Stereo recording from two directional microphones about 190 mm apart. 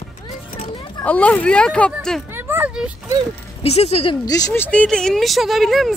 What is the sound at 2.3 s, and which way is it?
Speech, 10° right (ahead or behind).